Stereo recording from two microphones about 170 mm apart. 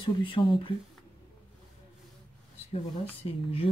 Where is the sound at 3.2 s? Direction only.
30° left (ahead or behind).